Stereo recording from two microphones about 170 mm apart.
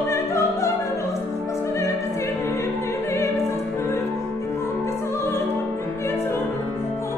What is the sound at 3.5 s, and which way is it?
Opera, 15° left (ahead or behind).